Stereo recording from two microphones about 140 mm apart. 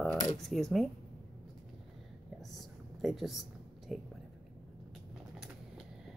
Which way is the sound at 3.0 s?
Centre (ahead or behind).